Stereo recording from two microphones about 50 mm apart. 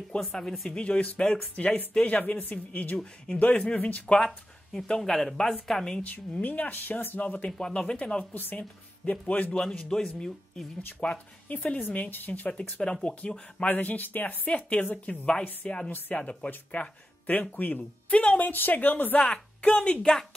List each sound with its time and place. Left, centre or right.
0.2 s speech: centre
0.7 s speech: centre
3.8 s speech: left
6.4 s speech: left
7.2 s speech: left
8.5 s a woman's voice: left
9.5 s speech: centre
11.0 s speech: left
13.7 s speech: left
18.2 s speech: left
18.5 s speech: left
19.1 s speech: left